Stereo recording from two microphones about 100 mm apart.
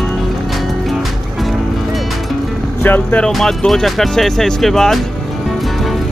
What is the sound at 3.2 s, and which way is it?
Speech, 5° left (ahead or behind).